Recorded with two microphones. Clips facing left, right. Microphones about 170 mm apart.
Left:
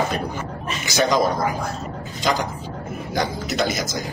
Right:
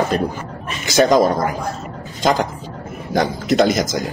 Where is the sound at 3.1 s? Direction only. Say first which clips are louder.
Right 8 dB; 50° right (ahead or behind).